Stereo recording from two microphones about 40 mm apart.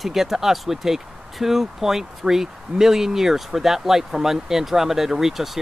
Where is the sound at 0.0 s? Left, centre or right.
Centre.